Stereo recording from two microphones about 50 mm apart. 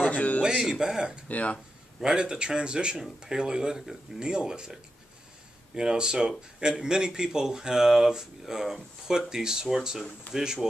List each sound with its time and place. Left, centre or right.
0.0 s music: left
0.4 s speech: centre
1.3 s speech: left
2.0 s speech: centre
5.8 s speech: centre